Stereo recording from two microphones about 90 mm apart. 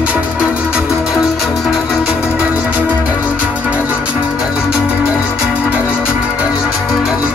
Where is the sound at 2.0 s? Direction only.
15° right (ahead or behind).